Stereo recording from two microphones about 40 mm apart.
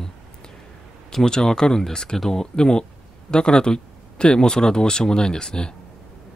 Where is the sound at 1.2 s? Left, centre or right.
Centre.